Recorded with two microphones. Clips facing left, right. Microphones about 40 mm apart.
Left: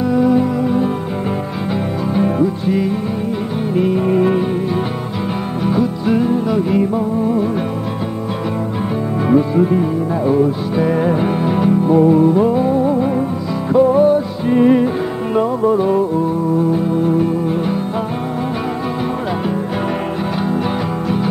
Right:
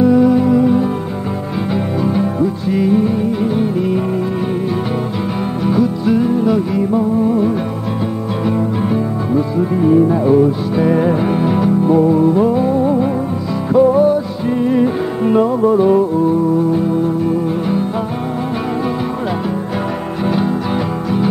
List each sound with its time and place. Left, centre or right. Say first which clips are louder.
0.0 s music: right 3 dB; centre
2.4 s music: right 1 dB; centre
5.7 s music: right 2 dB; centre
9.8 s music: right 6 dB; centre
13.7 s music: right 1 dB; centre
14.8 s music: right 2 dB; centre